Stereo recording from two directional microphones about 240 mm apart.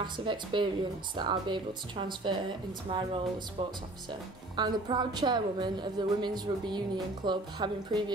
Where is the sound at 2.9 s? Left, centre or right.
Centre.